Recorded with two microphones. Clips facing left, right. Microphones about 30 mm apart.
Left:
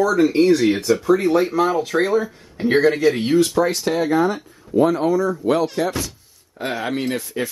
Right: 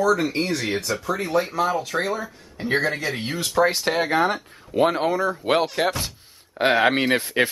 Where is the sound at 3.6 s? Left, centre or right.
Centre.